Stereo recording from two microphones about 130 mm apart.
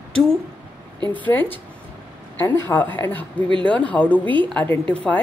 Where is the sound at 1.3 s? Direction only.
15° left (ahead or behind).